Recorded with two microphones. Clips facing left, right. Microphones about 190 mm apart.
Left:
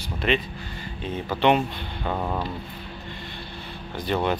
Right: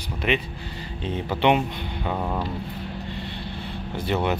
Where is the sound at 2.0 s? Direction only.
Centre (ahead or behind).